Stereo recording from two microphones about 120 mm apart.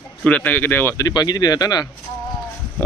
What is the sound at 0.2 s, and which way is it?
Speech, 15° left (ahead or behind).